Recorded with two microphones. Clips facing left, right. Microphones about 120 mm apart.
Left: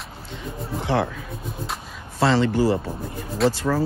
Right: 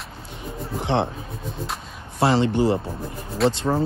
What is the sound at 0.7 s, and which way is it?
Speech, 25° right (ahead or behind).